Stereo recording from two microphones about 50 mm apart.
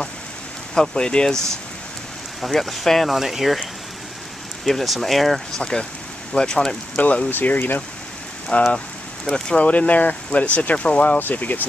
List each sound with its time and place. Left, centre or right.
0.7 s speech: centre
4.6 s speech: centre
5.6 s speech: centre
7.0 s speech: left
8.7 s a sound: centre
9.6 s speech: left